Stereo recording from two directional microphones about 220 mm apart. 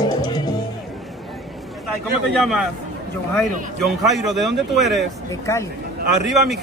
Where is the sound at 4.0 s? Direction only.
Centre (ahead or behind).